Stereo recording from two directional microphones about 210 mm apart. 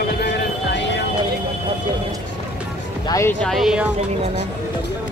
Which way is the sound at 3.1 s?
15° left (ahead or behind).